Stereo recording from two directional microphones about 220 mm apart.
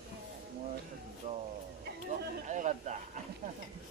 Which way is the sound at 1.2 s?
30° right (ahead or behind).